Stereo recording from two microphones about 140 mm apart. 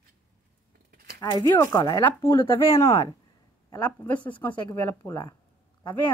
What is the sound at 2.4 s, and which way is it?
Speech, 40° left (ahead or behind).